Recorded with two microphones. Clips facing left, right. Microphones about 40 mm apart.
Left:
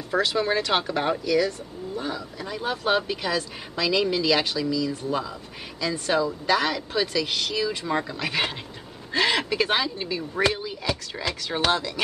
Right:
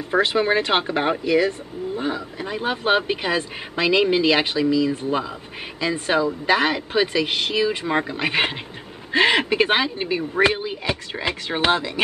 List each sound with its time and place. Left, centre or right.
0.1 s speech: right